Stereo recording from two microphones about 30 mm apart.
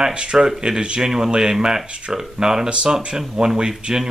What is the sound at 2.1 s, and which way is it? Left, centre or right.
Speech, right.